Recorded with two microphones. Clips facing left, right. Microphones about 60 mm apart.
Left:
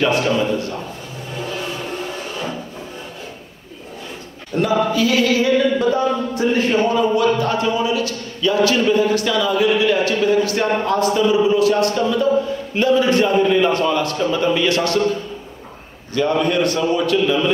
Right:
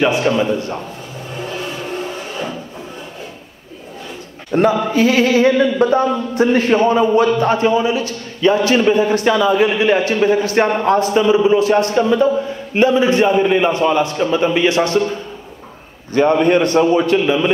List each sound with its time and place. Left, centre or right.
0.0 s a man's voice: centre
4.5 s speech: right
4.8 s mantra: right
7.3 s a man's voice: right
16.1 s mantra: right
16.9 s a man's voice: right